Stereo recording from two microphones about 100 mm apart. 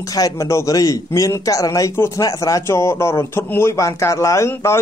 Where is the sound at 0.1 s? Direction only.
35° left (ahead or behind).